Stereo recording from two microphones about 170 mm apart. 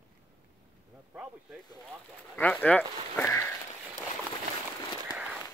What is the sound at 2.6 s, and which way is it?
Speech, 10° left (ahead or behind).